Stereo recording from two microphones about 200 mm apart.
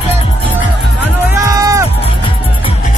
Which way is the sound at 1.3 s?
15° right (ahead or behind).